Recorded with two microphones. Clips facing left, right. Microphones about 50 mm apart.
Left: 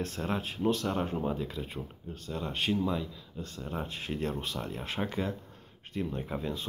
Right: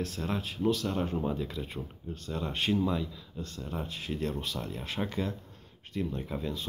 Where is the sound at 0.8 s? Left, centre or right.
Centre.